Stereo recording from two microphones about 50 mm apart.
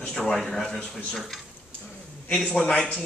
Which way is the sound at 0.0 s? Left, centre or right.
Centre.